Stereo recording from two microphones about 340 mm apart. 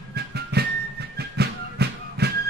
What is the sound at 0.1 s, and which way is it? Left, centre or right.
Music, right.